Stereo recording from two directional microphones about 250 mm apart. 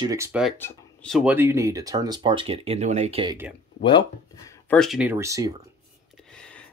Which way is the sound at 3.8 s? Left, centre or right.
Centre.